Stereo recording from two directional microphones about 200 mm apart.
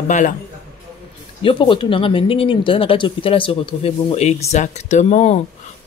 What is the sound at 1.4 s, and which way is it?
Speech, 25° left (ahead or behind).